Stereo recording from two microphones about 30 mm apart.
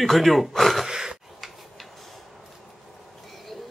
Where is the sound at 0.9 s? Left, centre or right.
Centre.